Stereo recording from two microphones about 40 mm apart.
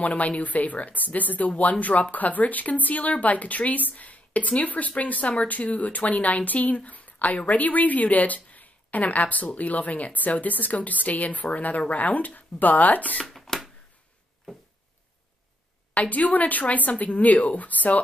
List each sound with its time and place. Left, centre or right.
0.0 s speech: left
13.2 s shuffling cards: centre
15.9 s speech: left